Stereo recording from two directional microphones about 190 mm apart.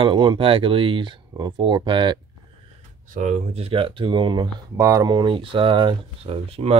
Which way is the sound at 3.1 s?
40° right (ahead or behind).